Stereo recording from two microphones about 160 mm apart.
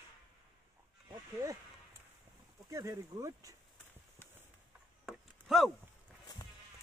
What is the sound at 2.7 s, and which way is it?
Speech, 20° right (ahead or behind).